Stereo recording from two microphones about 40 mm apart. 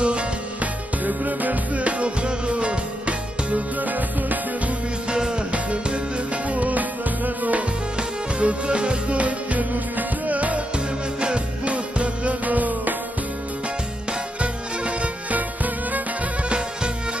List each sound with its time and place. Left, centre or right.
0.0 s music: right
1.0 s music: right
5.1 s music: right
8.4 s music: right
9.2 s music: right
11.1 s music: right
14.4 s music: right
15.3 s music: right
16.4 s music: right